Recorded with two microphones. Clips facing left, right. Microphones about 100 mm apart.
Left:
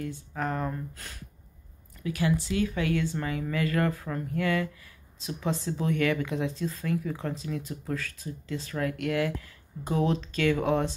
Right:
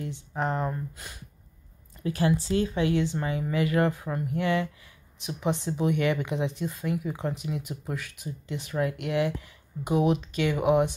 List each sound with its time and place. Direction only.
0.0 s speech: 20° right (ahead or behind)
2.0 s speech: 30° right (ahead or behind); by 11.0 s 15° right (ahead or behind)